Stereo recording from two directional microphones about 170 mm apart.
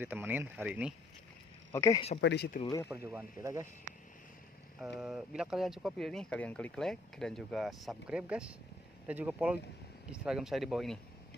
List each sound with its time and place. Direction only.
0.0 s speech: 10° right (ahead or behind)
1.7 s speech: 15° left (ahead or behind)
2.1 s speech: 80° left
2.6 s speech: 20° left (ahead or behind)
2.9 s speech: 15° right (ahead or behind)
4.7 s speech: 5° right (ahead or behind)